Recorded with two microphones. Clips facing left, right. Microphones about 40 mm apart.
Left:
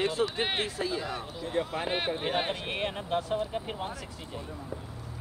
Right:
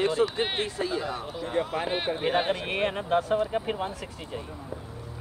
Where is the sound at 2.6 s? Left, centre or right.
Right.